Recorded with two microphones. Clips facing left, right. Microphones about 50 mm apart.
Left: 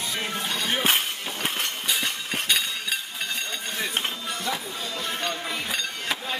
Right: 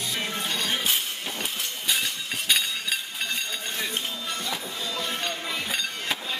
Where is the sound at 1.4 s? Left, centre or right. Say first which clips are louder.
Left 8 dB; left.